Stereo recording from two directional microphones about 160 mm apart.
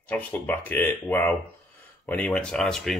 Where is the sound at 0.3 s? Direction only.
10° left (ahead or behind).